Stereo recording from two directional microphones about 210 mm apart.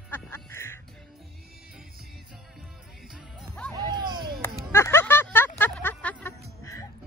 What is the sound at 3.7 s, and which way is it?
Music, 20° right (ahead or behind).